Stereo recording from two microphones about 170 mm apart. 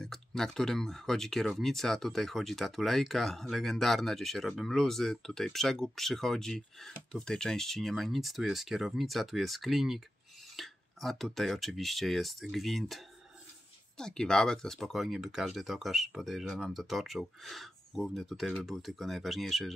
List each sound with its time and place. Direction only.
0.0 s speech: 5° left (ahead or behind)